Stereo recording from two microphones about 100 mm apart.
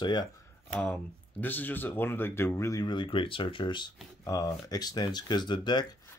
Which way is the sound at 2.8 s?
55° left (ahead or behind).